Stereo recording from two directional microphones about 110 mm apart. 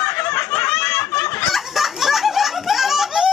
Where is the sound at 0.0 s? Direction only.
25° left (ahead or behind).